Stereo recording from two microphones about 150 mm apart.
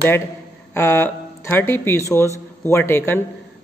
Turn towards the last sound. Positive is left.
turn(degrees=15)  # may be behind; listen again after turning